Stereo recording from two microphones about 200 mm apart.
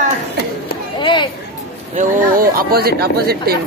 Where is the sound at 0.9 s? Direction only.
25° left (ahead or behind).